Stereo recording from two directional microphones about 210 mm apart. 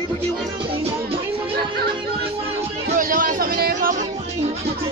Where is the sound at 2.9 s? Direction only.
40° right (ahead or behind).